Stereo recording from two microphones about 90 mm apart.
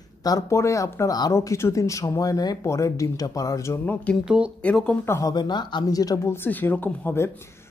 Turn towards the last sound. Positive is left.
turn(degrees=25)  # may be behind; listen again after turning